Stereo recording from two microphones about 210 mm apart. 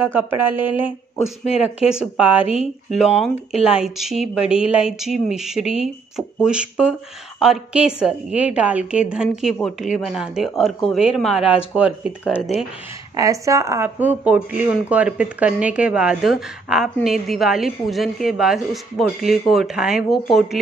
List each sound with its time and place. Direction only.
0.1 s a sound: 10° right (ahead or behind)
1.4 s speech: 30° left (ahead or behind)
1.9 s speech: 5° right (ahead or behind)
13.1 s speech: 15° right (ahead or behind); by 20.4 s centre (ahead or behind)